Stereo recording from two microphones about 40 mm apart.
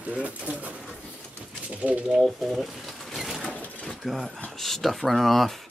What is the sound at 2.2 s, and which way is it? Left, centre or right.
Speech, centre.